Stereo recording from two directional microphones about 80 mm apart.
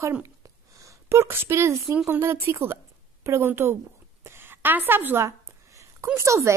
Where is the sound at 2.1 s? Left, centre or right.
Right.